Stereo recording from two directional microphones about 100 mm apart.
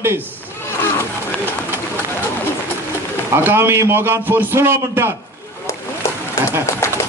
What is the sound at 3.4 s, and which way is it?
A man's voice, 25° right (ahead or behind).